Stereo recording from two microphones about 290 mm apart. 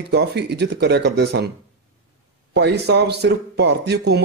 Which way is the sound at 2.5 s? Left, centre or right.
Right.